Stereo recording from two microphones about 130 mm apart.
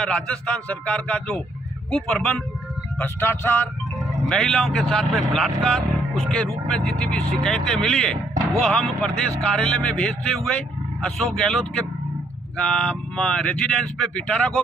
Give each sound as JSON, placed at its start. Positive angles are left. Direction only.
{"t": 0.0, "sound": "a man's voice", "side_deg": 5}
{"t": 3.0, "sound": "a man's voice", "side_deg": 15}
{"t": 4.3, "sound": "speech", "side_deg": 5}